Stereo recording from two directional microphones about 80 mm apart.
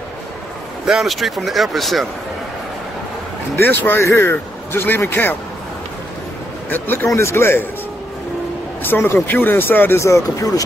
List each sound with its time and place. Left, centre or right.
0.8 s speech: centre
3.5 s speech: left
6.7 s speech: left
7.1 s a man's voice: left
8.8 s speech: left